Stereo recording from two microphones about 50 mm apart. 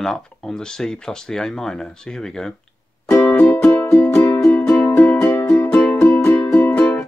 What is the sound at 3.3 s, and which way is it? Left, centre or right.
Music, left.